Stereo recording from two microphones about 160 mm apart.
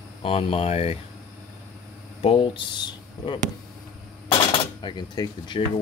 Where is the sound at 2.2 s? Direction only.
35° left (ahead or behind).